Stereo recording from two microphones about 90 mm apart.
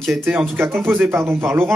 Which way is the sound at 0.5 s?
25° right (ahead or behind).